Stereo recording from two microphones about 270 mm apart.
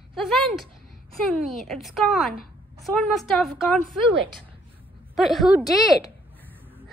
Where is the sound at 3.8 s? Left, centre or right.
Right.